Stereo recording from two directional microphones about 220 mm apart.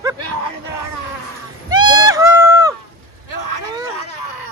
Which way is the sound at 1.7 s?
20° right (ahead or behind).